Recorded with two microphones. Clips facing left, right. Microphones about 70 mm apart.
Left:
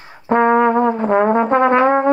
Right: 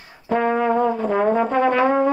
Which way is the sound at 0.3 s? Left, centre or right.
Left.